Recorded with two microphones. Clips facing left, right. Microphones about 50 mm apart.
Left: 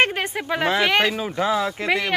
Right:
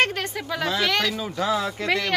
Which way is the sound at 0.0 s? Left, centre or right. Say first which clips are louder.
Left 3 dB; left.